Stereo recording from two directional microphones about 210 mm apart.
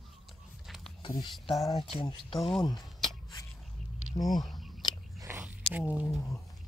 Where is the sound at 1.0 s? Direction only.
20° left (ahead or behind).